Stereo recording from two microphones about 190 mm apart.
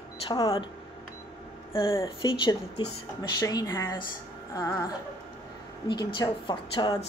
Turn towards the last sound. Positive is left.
turn(degrees=25)  # may be behind; listen again after turning